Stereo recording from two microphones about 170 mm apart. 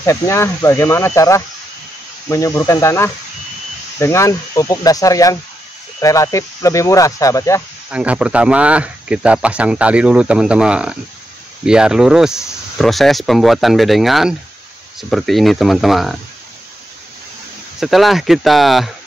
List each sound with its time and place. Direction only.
0.0 s speech: 15° left (ahead or behind)
7.9 s speech: 5° right (ahead or behind)
17.7 s speech: centre (ahead or behind)